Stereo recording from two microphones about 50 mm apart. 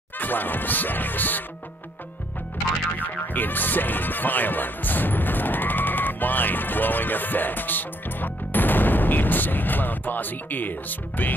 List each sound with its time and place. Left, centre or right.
0.2 s music: left
3.0 s speech: left